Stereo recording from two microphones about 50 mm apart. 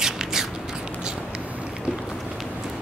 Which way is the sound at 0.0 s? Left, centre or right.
Centre.